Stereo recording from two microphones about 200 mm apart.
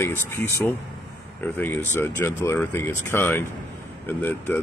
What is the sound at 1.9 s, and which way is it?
Speech, 10° left (ahead or behind).